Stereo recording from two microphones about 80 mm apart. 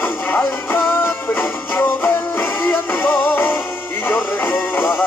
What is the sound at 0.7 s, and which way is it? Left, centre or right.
Music, left.